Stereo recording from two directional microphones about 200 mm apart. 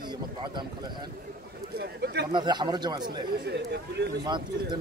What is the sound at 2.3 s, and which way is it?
Speech, 20° right (ahead or behind).